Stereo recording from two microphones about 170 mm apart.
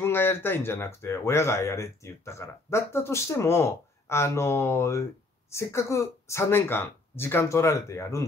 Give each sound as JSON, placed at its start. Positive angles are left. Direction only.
{"t": 0.0, "sound": "speech", "side_deg": 15}